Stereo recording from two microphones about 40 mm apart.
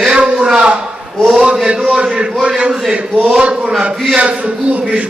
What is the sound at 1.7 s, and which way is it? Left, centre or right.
A man's voice, centre.